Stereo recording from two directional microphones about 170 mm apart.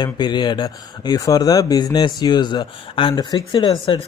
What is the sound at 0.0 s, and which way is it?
Speech, 25° left (ahead or behind).